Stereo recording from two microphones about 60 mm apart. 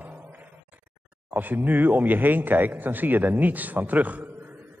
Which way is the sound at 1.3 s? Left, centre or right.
Right.